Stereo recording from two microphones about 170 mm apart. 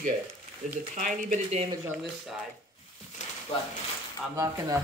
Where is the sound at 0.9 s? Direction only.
45° right (ahead or behind).